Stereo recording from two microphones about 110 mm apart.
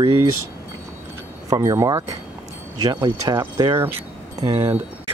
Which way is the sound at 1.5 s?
35° right (ahead or behind).